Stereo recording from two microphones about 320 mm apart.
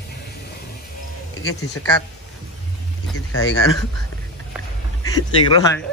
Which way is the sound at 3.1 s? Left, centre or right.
Left.